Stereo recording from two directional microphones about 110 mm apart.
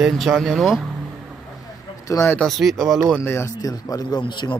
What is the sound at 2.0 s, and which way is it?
Speech, 30° left (ahead or behind).